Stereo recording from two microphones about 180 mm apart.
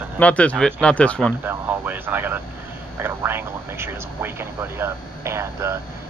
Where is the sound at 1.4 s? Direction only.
10° right (ahead or behind).